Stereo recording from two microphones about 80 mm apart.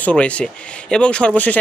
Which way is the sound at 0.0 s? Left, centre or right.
Centre.